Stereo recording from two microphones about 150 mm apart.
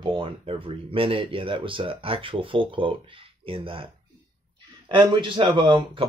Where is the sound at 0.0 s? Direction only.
35° right (ahead or behind).